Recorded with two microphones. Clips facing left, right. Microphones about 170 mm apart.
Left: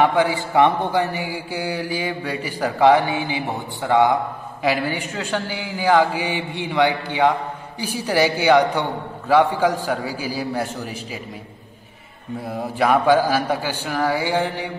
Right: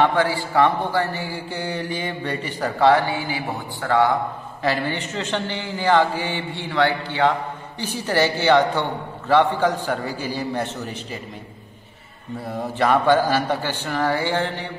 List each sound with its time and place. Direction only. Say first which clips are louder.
0.0 s mantra: left 1 dB; 15° left (ahead or behind)
12.4 s mantra: left 1 dB; 10° left (ahead or behind)